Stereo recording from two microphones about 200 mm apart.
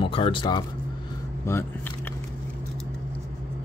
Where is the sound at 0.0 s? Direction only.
25° left (ahead or behind).